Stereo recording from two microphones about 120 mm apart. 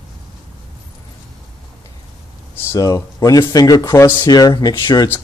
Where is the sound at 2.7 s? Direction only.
30° left (ahead or behind).